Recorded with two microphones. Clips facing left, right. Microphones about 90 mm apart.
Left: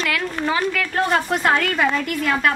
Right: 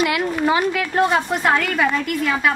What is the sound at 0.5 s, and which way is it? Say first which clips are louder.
Speech: right 2 dB; 20° right (ahead or behind).